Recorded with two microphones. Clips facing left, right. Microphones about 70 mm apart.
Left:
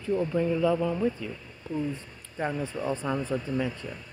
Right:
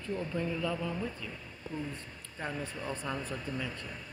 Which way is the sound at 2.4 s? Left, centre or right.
Left.